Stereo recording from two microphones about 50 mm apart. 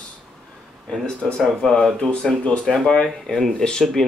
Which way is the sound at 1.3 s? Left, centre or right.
Centre.